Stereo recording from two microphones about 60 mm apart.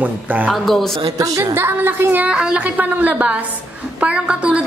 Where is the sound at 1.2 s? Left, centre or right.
Right.